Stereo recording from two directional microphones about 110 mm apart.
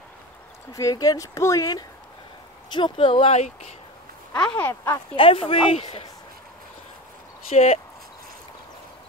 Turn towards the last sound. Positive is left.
turn(degrees=75)  # may be behind; listen again after turning